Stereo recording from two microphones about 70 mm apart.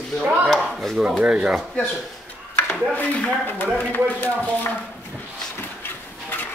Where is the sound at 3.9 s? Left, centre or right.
Left.